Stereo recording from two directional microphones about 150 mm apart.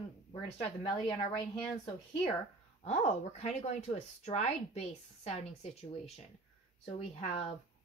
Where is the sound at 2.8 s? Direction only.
50° left (ahead or behind).